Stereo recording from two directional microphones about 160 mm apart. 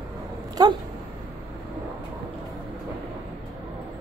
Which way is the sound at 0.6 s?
25° right (ahead or behind).